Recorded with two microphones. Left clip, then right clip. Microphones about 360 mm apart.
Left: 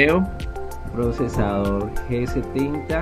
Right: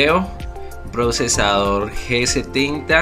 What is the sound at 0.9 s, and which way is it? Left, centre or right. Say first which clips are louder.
Speech: right 6 dB; right.